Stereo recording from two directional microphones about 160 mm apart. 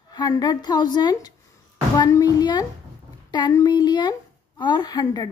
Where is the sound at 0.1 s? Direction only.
25° left (ahead or behind).